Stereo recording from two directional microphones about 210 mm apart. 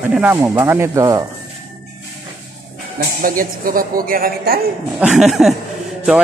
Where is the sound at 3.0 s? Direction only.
40° right (ahead or behind).